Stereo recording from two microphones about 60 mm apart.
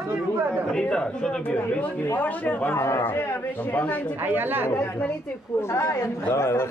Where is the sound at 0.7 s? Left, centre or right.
Centre.